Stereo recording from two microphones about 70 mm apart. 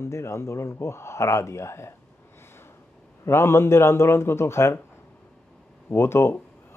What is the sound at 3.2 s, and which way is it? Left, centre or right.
Speech, left.